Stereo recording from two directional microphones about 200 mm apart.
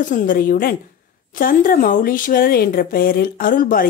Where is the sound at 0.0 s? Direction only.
40° left (ahead or behind).